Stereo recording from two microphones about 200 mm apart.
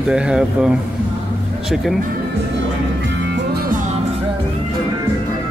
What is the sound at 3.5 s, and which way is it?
Music, 45° right (ahead or behind).